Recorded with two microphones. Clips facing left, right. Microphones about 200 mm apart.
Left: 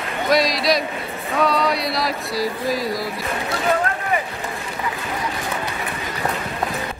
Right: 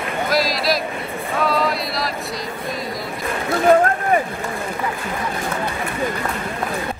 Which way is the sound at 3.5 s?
50° right (ahead or behind).